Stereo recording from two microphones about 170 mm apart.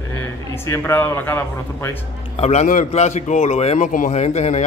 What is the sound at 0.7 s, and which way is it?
Speech, 15° left (ahead or behind).